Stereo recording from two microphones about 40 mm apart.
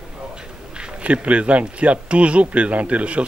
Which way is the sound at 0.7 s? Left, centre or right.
Right.